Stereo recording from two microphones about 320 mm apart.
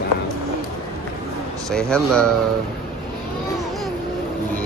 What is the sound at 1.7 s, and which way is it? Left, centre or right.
Speech, centre.